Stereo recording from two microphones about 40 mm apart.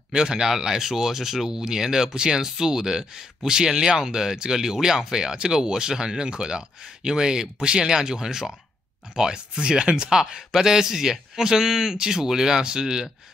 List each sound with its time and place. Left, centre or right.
0.1 s speech: centre